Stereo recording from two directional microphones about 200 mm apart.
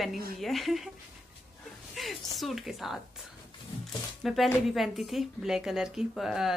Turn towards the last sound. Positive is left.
turn(degrees=0)  # may be behind; listen again after turning